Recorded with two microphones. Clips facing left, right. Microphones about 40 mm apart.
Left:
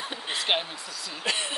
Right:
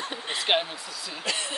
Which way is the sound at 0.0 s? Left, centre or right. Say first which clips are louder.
Right 1 dB; centre.